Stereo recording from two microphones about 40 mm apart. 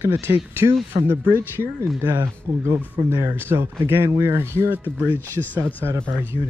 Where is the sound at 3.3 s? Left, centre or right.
Right.